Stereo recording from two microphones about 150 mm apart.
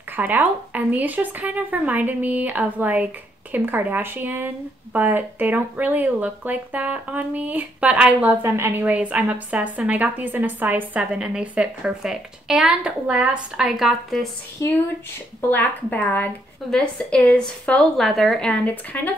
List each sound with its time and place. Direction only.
0.1 s speech: 10° right (ahead or behind)
14.6 s a woman's voice: 15° left (ahead or behind)